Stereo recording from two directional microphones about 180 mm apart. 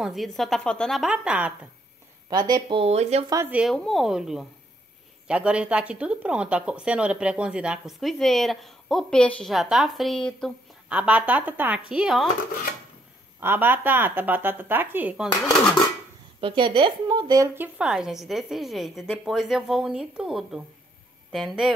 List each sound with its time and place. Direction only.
0.0 s speech: centre (ahead or behind)
2.2 s speech: 25° right (ahead or behind)
3.3 s speech: 15° right (ahead or behind)
3.7 s speech: centre (ahead or behind)
10.9 s speech: 10° right (ahead or behind)
13.4 s speech: 10° right (ahead or behind)
16.3 s speech: 30° right (ahead or behind)
17.7 s speech: 5° right (ahead or behind)